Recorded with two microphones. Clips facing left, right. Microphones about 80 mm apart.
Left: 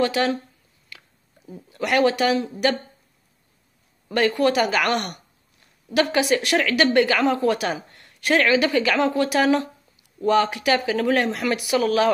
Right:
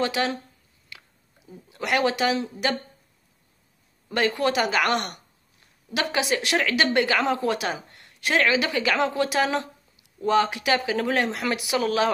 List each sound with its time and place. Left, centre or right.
0.0 s a woman's voice: right
1.7 s a woman's voice: centre
4.1 s a woman's voice: right